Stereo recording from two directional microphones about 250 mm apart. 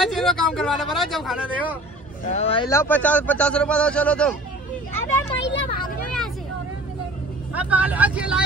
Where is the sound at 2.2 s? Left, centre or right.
Left.